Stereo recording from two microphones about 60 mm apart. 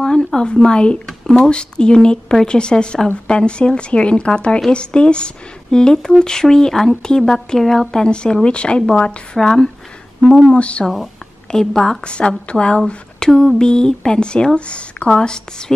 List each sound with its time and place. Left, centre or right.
0.0 s speech: centre
10.5 s speech: centre
11.5 s speech: centre